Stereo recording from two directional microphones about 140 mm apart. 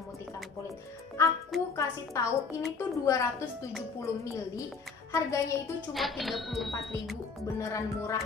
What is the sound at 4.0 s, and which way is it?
Speech, 20° left (ahead or behind).